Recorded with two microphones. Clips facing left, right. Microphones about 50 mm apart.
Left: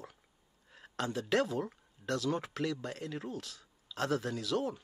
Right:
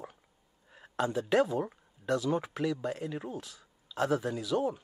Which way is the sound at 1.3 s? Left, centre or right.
Centre.